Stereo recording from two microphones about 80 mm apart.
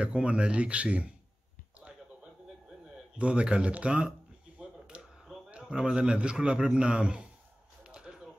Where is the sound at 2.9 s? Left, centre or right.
Centre.